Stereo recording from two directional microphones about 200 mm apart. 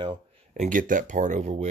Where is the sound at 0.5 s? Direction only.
40° right (ahead or behind).